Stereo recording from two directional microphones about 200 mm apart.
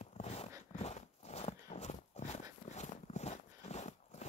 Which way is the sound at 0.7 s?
35° left (ahead or behind).